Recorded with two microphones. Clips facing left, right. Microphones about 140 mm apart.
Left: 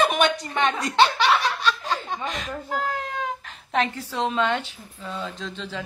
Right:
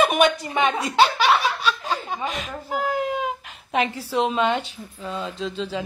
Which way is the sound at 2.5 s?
10° right (ahead or behind).